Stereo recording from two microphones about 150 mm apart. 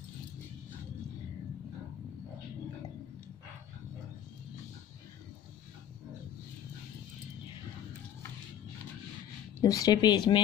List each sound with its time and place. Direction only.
9.6 s speech: 25° left (ahead or behind)